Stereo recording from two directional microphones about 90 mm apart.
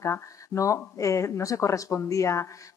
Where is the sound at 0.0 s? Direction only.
35° left (ahead or behind).